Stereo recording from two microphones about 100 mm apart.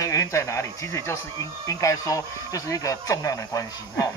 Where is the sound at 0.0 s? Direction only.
35° left (ahead or behind).